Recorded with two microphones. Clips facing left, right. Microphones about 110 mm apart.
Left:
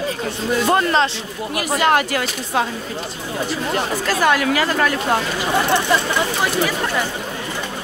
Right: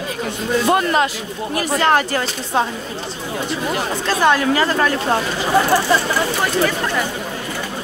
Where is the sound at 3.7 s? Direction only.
25° right (ahead or behind).